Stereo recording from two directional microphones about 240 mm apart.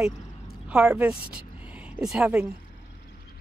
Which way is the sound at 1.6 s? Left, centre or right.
Centre.